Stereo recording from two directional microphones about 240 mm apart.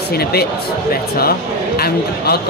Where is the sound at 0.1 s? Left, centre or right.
Left.